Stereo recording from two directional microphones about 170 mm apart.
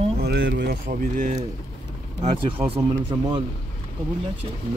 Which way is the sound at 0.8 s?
50° right (ahead or behind).